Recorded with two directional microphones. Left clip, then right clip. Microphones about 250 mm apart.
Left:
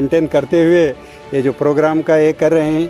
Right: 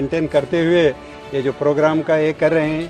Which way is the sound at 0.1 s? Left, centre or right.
Left.